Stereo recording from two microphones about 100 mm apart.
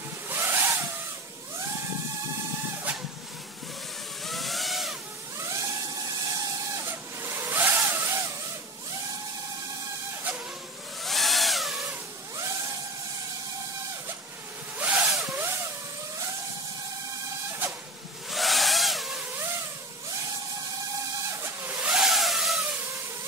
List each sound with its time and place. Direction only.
0.3 s vehicle: 25° right (ahead or behind)
4.2 s vehicle: centre (ahead or behind)
5.4 s vehicle: 30° right (ahead or behind)
11.0 s a sound: centre (ahead or behind)
14.8 s zipper: 15° right (ahead or behind)
15.2 s vehicle: 25° right (ahead or behind)
17.5 s printer: 25° right (ahead or behind)
18.3 s vehicle: centre (ahead or behind)
19.2 s vehicle: 20° right (ahead or behind)
21.3 s vehicle: 25° right (ahead or behind); by 22.7 s centre (ahead or behind)